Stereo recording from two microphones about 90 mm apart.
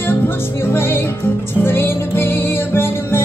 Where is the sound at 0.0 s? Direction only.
25° left (ahead or behind).